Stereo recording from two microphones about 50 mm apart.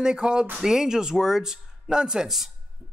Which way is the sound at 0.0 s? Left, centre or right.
Centre.